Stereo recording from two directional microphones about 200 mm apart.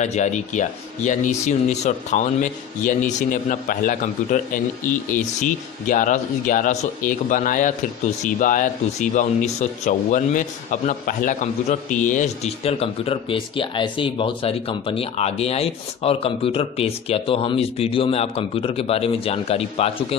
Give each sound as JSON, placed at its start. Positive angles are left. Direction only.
{"t": 0.0, "sound": "speech", "side_deg": 35}